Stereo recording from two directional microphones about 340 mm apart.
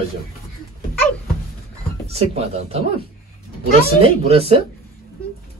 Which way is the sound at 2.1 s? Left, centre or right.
Centre.